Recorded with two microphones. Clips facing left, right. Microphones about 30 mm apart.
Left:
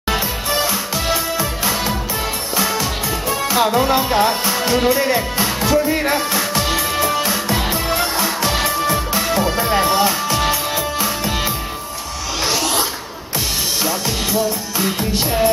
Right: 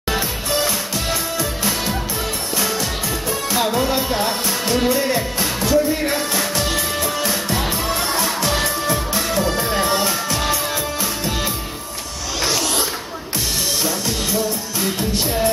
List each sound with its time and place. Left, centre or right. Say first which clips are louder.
1.1 s music: left 3 dB; centre
3.5 s music: left 4 dB; centre
14.8 s music: left 2 dB; left